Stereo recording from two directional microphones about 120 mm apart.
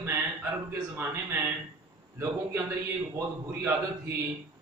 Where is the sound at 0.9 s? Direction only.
20° right (ahead or behind).